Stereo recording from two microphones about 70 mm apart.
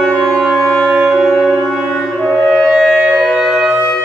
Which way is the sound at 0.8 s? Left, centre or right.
Centre.